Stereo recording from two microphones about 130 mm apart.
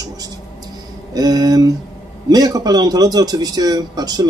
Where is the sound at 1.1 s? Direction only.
30° right (ahead or behind).